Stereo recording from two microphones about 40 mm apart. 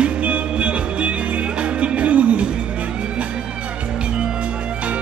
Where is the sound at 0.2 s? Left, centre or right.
Right.